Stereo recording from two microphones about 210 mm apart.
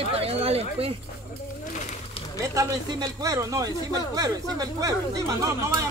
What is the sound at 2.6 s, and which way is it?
Speech, 15° right (ahead or behind).